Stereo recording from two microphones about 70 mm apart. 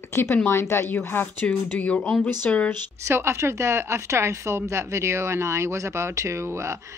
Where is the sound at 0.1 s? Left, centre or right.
Left.